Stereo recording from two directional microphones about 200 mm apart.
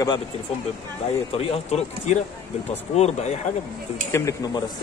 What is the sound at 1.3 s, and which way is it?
Speech, 30° left (ahead or behind).